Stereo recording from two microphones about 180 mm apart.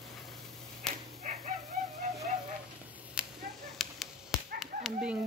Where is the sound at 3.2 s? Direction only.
5° right (ahead or behind).